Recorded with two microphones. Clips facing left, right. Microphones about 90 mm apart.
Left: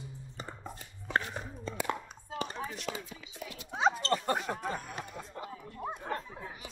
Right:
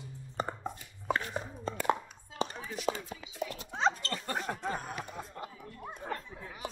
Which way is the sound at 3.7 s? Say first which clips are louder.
Left 2 dB; 10° left (ahead or behind).